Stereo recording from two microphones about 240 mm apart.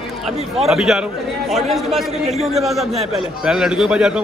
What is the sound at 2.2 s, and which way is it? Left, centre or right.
Speech, right.